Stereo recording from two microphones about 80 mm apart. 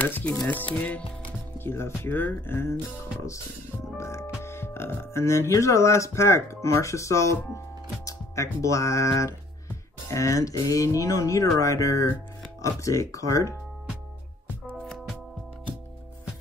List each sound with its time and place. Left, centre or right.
0.0 s music: centre
1.6 s speech: left
4.0 s music: left
4.4 s speech: left
14.7 s music: centre